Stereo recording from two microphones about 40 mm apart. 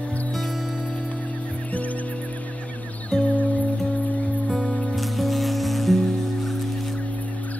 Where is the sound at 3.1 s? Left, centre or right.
Left.